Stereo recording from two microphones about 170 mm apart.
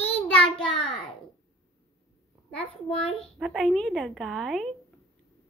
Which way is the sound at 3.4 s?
Centre (ahead or behind).